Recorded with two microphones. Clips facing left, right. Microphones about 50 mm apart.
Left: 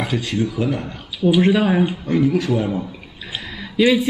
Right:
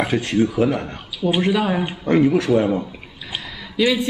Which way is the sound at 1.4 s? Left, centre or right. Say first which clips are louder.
Left 3 dB; centre.